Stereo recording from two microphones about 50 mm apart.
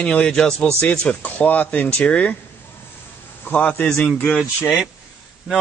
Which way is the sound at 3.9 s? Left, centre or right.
Centre.